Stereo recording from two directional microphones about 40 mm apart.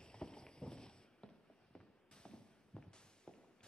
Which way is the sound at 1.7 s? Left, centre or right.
Centre.